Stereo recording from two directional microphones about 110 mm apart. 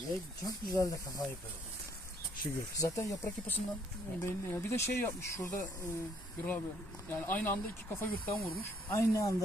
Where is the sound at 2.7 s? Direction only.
30° left (ahead or behind).